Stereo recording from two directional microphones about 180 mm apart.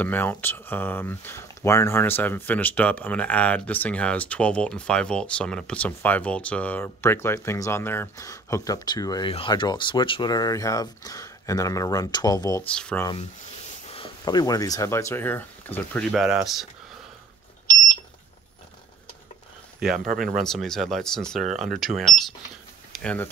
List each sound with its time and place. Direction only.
0.0 s speech: 10° left (ahead or behind)
12.7 s speech: 5° left (ahead or behind)
13.8 s speech: 30° left (ahead or behind); by 16.6 s centre (ahead or behind)
19.8 s speech: centre (ahead or behind)